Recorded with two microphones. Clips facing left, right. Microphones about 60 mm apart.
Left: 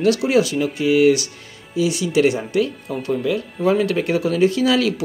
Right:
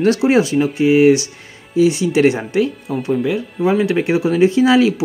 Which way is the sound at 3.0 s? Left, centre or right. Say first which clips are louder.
Right 3 dB; centre.